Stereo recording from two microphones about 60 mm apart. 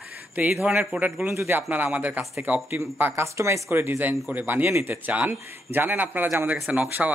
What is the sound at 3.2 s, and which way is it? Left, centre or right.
Speech, right.